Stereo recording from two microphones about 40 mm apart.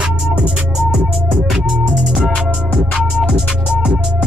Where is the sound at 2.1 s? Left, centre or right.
Centre.